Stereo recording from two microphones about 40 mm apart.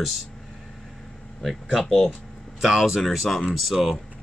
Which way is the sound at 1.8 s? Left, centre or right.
Centre.